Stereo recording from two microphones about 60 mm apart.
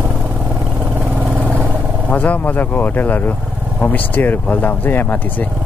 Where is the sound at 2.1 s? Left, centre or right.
Left.